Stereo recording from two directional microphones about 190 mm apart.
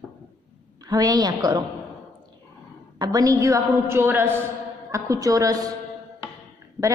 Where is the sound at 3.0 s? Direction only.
20° right (ahead or behind).